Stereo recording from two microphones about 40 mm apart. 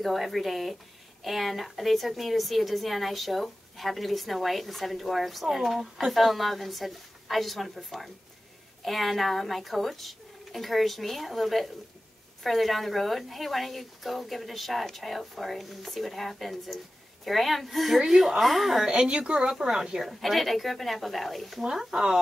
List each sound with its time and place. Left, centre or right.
0.0 s a woman's voice: centre
18.9 s a woman's voice: right
20.1 s a woman's voice: centre